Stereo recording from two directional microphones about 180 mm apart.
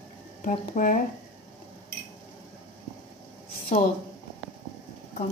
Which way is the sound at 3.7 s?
40° left (ahead or behind).